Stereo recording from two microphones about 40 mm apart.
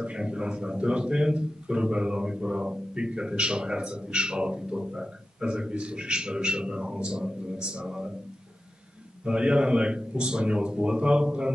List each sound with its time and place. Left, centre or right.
0.0 s a man's voice: right
9.2 s a man's voice: right